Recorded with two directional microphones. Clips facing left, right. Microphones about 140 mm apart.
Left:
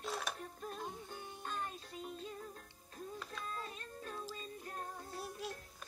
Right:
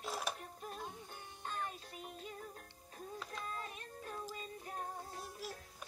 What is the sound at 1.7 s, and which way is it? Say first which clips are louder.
Music: left 2 dB; 10° right (ahead or behind).